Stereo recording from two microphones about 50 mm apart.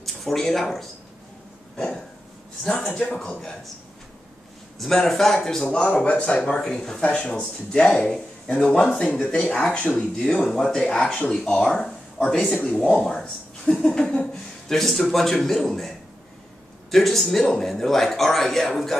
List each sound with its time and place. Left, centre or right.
0.0 s speech: centre
2.6 s speech: centre
4.7 s speech: centre
6.0 s speech: left
6.5 s speech: centre
9.8 s speech: left
10.3 s speech: centre
16.9 s a man's voice: centre